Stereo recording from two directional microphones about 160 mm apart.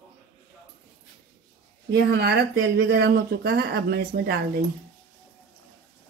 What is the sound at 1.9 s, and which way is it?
Speech, 90° right.